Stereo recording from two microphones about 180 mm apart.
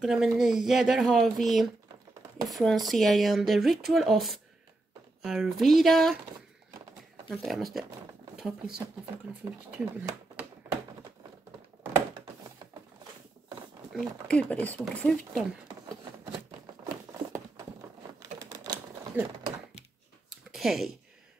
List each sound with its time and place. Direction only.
0.0 s speech: 5° right (ahead or behind)
7.2 s speech: centre (ahead or behind)
10.6 s typing: 10° right (ahead or behind)
13.9 s speech: 5° left (ahead or behind)
18.2 s typing: 20° right (ahead or behind)
19.2 s speech: 10° right (ahead or behind)
20.2 s a sound: centre (ahead or behind)